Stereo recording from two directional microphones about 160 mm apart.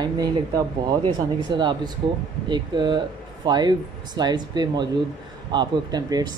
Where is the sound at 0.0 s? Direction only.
25° right (ahead or behind).